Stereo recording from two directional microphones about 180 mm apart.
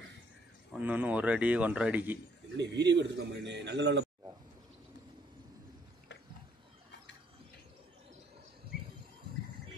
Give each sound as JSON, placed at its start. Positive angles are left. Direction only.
{"t": 0.8, "sound": "a man's voice", "side_deg": -10}
{"t": 2.5, "sound": "a man's voice", "side_deg": -75}